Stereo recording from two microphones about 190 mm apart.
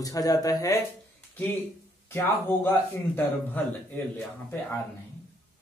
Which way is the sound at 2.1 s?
10° left (ahead or behind).